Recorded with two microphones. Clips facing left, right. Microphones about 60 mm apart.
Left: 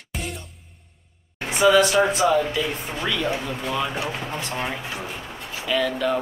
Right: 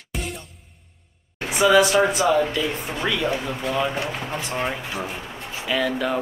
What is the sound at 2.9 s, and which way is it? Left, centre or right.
Speech, centre.